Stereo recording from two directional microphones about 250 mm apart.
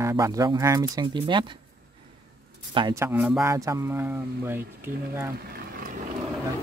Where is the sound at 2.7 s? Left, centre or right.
Centre.